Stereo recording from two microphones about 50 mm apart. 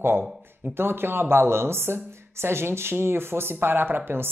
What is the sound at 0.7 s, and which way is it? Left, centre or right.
Speech, right.